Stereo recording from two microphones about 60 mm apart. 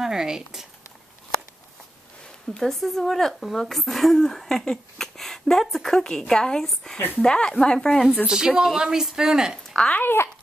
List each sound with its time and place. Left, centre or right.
0.0 s speech: centre
2.5 s speech: centre
8.3 s speech: centre
9.9 s a child's voice: left